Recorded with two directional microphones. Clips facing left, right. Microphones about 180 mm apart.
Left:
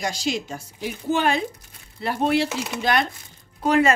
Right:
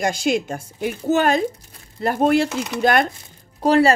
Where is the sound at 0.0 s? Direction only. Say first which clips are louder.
Right 6 dB; 55° right (ahead or behind).